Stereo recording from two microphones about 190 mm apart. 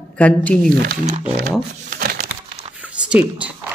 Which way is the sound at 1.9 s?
50° right (ahead or behind).